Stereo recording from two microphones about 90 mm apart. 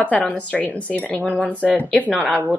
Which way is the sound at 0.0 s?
15° left (ahead or behind).